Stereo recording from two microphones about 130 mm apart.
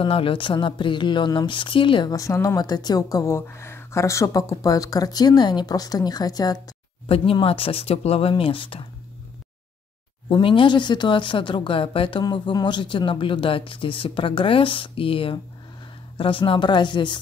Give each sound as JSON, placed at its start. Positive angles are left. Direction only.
{"t": 0.0, "sound": "speech", "side_deg": 40}
{"t": 7.1, "sound": "speech", "side_deg": 45}
{"t": 10.3, "sound": "a woman's voice", "side_deg": 40}